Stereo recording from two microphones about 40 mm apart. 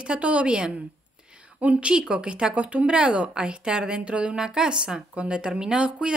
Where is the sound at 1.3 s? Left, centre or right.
Right.